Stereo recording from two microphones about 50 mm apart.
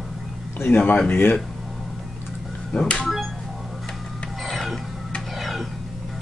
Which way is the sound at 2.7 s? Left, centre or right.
Left.